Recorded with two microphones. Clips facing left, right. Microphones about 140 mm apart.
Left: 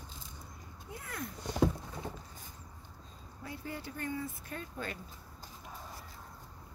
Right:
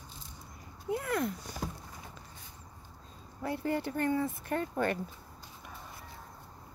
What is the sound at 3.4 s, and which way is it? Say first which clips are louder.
Speech: right 10 dB; 65° right (ahead or behind).